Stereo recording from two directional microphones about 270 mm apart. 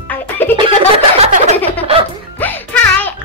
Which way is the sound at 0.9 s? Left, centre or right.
Right.